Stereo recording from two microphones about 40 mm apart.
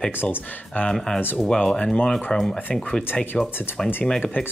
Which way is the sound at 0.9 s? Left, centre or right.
Centre.